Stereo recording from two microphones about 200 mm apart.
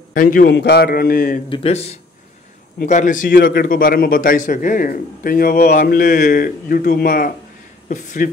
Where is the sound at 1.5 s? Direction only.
30° left (ahead or behind).